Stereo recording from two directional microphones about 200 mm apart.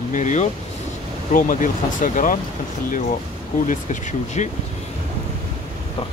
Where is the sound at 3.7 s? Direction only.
40° left (ahead or behind).